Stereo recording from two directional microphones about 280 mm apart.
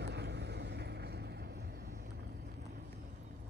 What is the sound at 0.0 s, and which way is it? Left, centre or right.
Vehicle, right.